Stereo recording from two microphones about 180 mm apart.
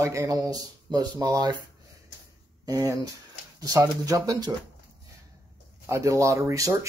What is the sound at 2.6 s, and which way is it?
Speech, 20° right (ahead or behind).